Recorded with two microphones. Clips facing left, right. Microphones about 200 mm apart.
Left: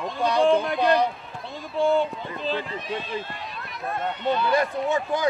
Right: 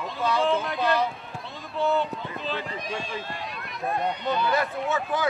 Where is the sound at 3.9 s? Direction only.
15° right (ahead or behind).